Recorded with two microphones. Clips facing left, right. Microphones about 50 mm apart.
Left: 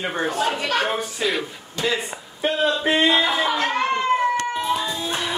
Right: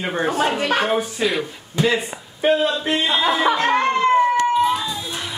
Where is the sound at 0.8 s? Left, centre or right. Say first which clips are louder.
Right 3 dB; centre.